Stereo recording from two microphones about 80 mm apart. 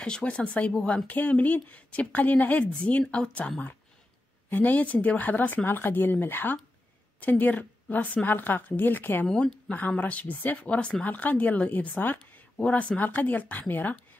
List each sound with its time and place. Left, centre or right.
0.0 s speech: centre
9.3 s speech: centre